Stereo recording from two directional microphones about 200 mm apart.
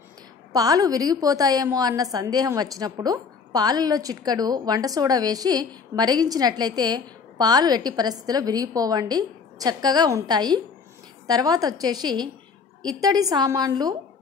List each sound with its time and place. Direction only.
0.5 s a woman's voice: 20° right (ahead or behind)